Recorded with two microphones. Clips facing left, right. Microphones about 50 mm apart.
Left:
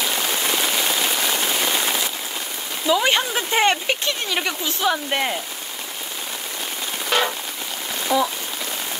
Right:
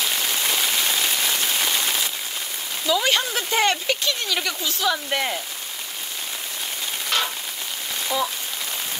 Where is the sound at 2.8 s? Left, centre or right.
Left.